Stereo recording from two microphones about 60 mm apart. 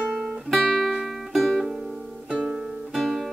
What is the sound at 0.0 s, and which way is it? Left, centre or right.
Music, centre.